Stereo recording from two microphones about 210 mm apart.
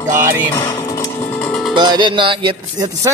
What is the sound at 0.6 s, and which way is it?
Music, 15° left (ahead or behind).